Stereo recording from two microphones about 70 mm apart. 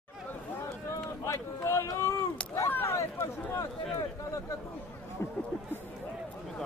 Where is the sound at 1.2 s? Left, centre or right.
Left.